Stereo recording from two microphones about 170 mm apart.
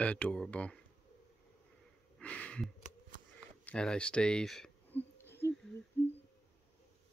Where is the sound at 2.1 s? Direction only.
10° left (ahead or behind).